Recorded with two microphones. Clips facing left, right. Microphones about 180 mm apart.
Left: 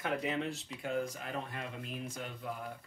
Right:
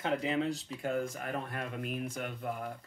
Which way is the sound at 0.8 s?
50° right (ahead or behind).